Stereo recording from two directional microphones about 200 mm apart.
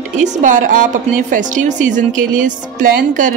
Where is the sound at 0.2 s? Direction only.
40° right (ahead or behind).